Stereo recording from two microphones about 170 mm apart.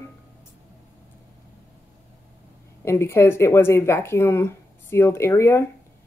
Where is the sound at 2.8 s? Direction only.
15° left (ahead or behind).